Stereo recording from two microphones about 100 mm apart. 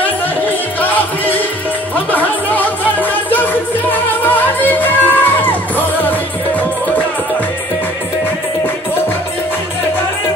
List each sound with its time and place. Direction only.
0.0 s music: 20° left (ahead or behind)